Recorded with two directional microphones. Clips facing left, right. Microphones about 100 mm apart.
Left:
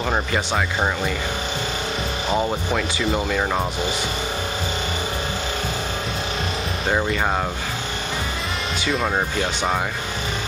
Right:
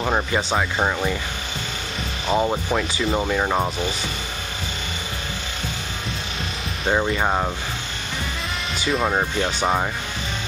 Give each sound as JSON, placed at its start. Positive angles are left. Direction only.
{"t": 0.0, "sound": "speech", "side_deg": -10}
{"t": 2.3, "sound": "speech", "side_deg": -5}
{"t": 6.9, "sound": "speech", "side_deg": -5}
{"t": 8.8, "sound": "speech", "side_deg": 0}